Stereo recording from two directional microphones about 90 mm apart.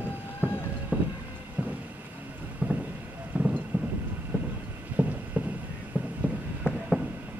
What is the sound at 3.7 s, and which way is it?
Thunder, 20° right (ahead or behind).